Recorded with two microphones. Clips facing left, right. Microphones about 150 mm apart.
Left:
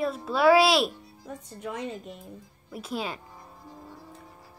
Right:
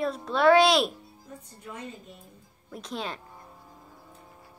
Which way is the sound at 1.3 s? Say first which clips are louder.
Left 7 dB; 85° left.